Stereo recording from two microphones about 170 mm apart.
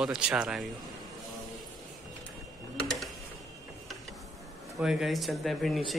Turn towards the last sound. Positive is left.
turn(degrees=0)  # may be behind; listen again after turning